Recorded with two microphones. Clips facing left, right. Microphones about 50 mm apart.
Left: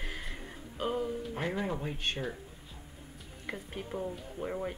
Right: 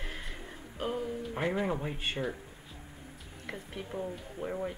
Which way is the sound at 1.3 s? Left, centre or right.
Centre.